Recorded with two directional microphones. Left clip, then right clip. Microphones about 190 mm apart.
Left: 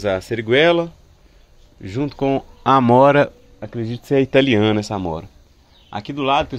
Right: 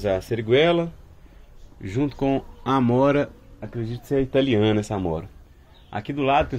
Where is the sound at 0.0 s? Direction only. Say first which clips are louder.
Left 3 dB; 35° left (ahead or behind).